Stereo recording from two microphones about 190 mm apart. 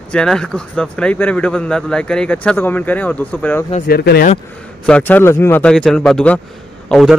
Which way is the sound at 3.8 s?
55° left (ahead or behind).